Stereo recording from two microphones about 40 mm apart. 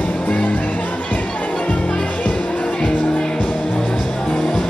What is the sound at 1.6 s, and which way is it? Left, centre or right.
Music, left.